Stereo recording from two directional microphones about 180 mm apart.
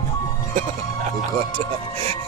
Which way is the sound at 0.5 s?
40° right (ahead or behind).